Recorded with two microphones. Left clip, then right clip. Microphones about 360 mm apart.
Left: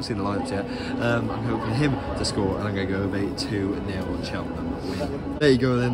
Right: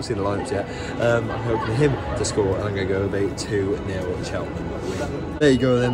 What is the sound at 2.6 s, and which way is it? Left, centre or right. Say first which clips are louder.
A man's voice: right 3 dB; centre.